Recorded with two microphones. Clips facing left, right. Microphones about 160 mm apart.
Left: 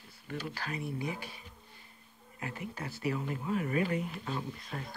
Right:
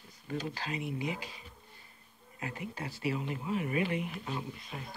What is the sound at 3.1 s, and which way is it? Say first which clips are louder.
Speech: even; 30° right (ahead or behind).